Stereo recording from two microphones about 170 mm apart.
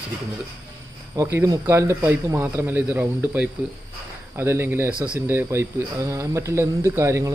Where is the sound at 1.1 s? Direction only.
15° right (ahead or behind).